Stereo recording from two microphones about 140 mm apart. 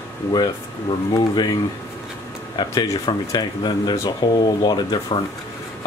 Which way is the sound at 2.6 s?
25° left (ahead or behind).